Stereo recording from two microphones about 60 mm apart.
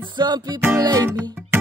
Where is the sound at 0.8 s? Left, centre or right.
Right.